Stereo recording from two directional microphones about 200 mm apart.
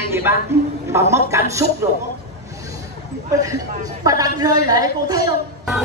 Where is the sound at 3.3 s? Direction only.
15° right (ahead or behind).